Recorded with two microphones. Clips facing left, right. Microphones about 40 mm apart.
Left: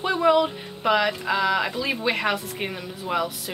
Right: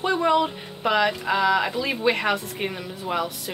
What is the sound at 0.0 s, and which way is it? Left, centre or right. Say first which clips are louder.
Speech: left 1 dB; centre.